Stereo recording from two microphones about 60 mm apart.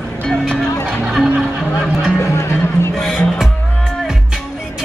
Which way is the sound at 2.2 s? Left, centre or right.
Left.